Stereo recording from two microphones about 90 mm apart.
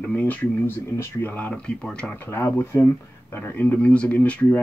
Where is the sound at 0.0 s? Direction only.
15° left (ahead or behind).